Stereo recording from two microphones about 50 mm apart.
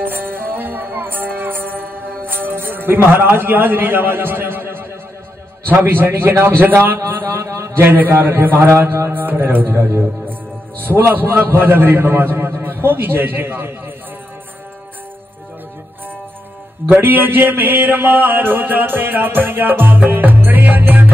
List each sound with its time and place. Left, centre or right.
0.0 s music: right
5.7 s a man's voice: right
7.4 s a man's voice: right
9.2 s a man's voice: right
16.8 s a sound: right